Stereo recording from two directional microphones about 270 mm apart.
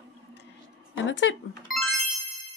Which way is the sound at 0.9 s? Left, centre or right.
Left.